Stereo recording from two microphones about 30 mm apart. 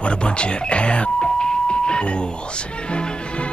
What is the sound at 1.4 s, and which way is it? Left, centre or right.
Music, left.